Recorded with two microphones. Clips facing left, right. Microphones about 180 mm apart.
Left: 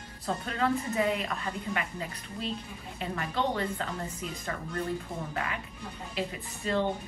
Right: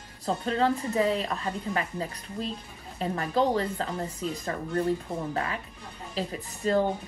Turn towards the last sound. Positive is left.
turn(degrees=-40)  # may be behind; listen again after turning